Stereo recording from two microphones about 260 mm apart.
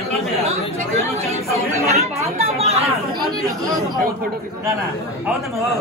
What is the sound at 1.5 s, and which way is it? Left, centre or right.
Speech, right.